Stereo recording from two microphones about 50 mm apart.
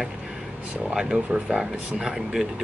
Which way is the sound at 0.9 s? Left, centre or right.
Centre.